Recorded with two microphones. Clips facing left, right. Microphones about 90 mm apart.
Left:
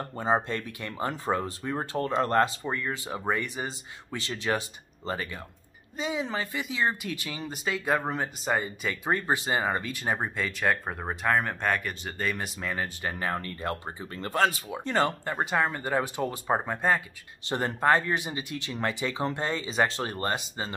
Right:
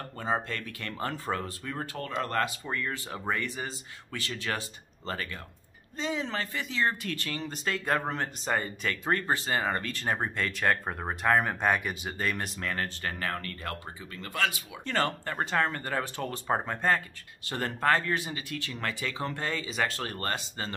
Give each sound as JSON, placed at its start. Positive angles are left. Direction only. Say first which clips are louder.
{"t": 0.0, "sound": "speech", "louder": "left 5 dB", "side_deg": 25}
{"t": 12.3, "sound": "speech", "louder": "left 1 dB", "side_deg": 5}
{"t": 14.9, "sound": "speech", "louder": "left 3 dB", "side_deg": 20}